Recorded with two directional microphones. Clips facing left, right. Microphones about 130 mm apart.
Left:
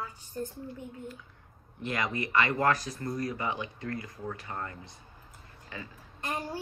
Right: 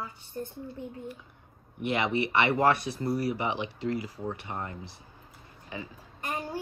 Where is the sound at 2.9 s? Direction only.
10° right (ahead or behind).